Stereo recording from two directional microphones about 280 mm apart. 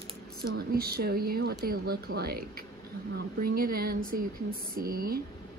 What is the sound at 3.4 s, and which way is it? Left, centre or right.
A woman's voice, right.